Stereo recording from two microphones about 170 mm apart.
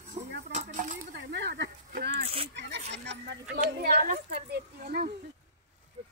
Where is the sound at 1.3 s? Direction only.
85° right.